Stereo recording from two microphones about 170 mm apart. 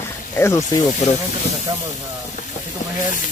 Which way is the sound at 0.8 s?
45° left (ahead or behind).